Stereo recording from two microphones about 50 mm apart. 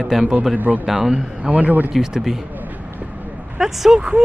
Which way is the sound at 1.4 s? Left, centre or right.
Right.